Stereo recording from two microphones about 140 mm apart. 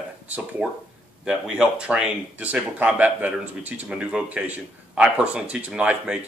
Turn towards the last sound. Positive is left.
turn(degrees=-5)  # may be behind; listen again after turning